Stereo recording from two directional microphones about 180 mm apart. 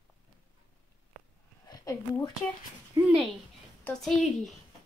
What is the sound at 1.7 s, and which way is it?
Speech, 20° left (ahead or behind).